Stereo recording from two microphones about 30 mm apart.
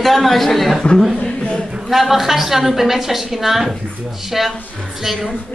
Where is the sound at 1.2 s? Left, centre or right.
Left.